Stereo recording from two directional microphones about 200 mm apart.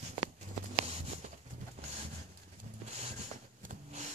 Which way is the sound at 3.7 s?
35° right (ahead or behind).